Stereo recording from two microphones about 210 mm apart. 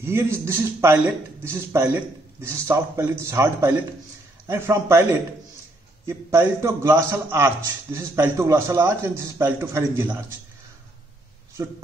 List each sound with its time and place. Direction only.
0.0 s a man's voice: 10° right (ahead or behind)
6.0 s a man's voice: 10° right (ahead or behind)
11.6 s a man's voice: 15° right (ahead or behind)